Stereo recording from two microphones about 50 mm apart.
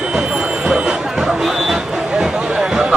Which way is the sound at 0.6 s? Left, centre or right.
Centre.